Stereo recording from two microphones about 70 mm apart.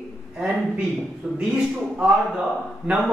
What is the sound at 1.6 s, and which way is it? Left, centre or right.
Speech, centre.